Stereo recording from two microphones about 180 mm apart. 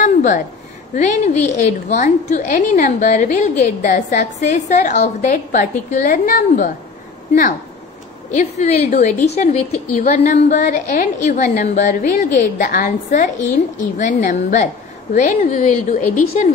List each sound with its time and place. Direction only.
0.0 s a sound: 45° left (ahead or behind)
0.9 s a woman's voice: 40° left (ahead or behind)
8.3 s a woman's voice: 40° left (ahead or behind)